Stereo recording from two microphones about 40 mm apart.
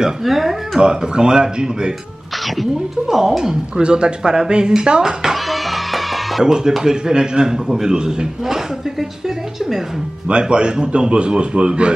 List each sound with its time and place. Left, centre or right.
0.2 s speech: centre
0.7 s a man's voice: centre
2.4 s a man's voice: centre
3.8 s a man's voice: right
5.2 s music: centre
6.4 s a man's voice: centre
10.2 s a man's voice: right